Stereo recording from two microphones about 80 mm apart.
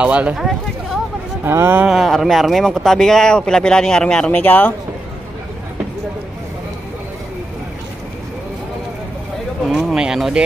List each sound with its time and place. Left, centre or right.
0.0 s speech: centre
1.4 s speech: right
1.9 s speech: centre; by 4.7 s left
9.7 s speech: centre